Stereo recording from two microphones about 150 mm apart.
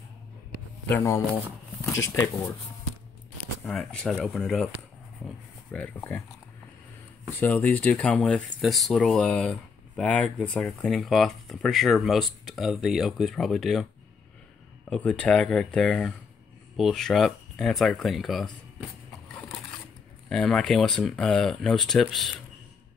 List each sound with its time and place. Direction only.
0.8 s speech: 15° left (ahead or behind)
3.6 s speech: 5° left (ahead or behind)
7.3 s speech: 10° left (ahead or behind)
14.9 s speech: 10° left (ahead or behind)
20.2 s speech: 5° left (ahead or behind)